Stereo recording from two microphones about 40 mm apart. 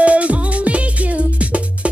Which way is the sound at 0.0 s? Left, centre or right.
Right.